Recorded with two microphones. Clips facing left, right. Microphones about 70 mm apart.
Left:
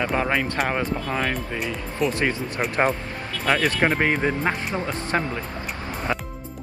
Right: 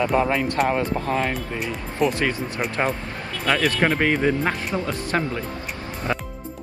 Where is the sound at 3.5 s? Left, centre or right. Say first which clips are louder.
Even; left.